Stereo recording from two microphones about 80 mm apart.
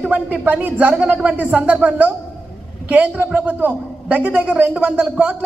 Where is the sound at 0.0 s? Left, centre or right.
Centre.